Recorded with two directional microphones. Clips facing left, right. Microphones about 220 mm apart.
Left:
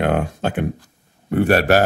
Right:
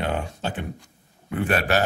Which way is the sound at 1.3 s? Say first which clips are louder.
Left 8 dB; 40° left (ahead or behind).